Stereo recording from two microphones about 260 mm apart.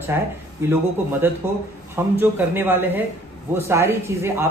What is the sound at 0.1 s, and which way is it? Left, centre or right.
A man's voice, centre.